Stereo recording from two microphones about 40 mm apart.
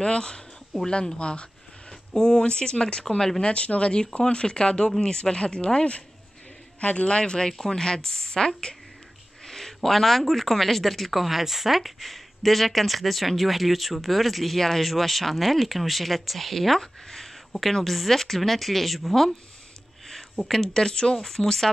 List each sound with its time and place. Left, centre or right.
0.0 s speech: left
3.4 s speech: left; by 21.6 s centre